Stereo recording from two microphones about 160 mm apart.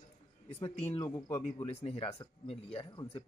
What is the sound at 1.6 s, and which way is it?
Speech, 40° left (ahead or behind).